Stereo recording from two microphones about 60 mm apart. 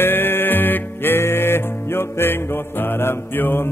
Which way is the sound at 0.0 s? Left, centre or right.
Left.